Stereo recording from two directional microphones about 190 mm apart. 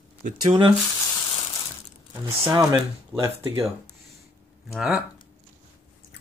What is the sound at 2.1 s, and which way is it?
Speech, 20° right (ahead or behind).